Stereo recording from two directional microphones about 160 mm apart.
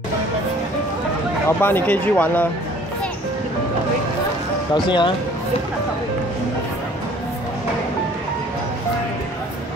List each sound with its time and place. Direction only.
1.6 s speech: 10° left (ahead or behind)
4.7 s speech: 30° left (ahead or behind)